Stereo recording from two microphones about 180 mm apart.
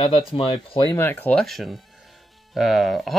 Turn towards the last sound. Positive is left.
turn(degrees=0)  # may be behind; listen again after turning